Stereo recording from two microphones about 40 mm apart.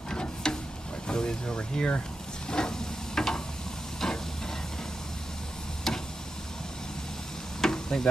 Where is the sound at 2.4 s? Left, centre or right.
Centre.